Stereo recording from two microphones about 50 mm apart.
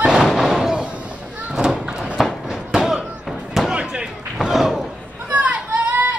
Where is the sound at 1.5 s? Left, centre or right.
Centre.